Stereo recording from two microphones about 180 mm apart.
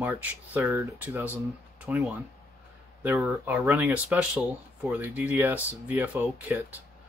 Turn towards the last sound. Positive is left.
turn(degrees=-10)  # may be behind; listen again after turning